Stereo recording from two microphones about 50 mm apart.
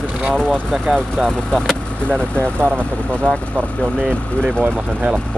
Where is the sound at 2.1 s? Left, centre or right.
Left.